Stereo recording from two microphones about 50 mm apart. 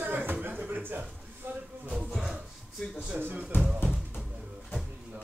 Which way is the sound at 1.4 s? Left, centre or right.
Right.